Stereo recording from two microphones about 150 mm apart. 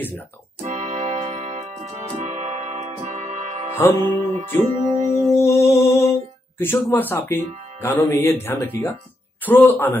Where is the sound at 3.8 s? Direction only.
15° left (ahead or behind).